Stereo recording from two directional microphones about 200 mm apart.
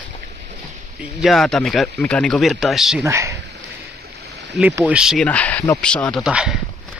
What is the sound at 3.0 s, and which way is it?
Speech, 15° right (ahead or behind).